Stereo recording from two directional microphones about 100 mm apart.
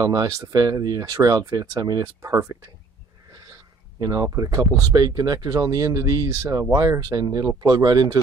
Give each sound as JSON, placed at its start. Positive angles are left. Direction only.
{"t": 0.0, "sound": "speech", "side_deg": -35}
{"t": 4.0, "sound": "speech", "side_deg": -35}